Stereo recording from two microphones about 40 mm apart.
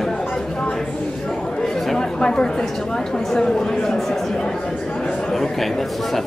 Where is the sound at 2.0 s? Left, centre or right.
Left.